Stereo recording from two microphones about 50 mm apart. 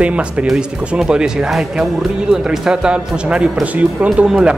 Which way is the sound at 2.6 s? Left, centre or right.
Centre.